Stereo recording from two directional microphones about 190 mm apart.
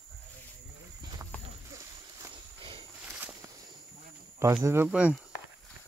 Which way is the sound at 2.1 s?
25° right (ahead or behind).